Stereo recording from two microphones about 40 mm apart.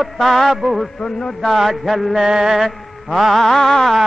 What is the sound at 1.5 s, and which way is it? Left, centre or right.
Mantra, centre.